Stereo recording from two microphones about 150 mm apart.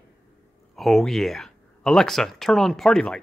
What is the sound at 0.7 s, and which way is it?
Speech, centre (ahead or behind).